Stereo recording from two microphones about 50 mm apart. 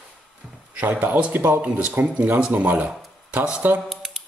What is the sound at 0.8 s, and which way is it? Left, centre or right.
A man's voice, right.